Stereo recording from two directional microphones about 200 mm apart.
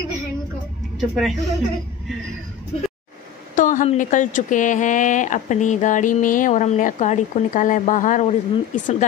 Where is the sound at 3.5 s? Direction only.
40° left (ahead or behind).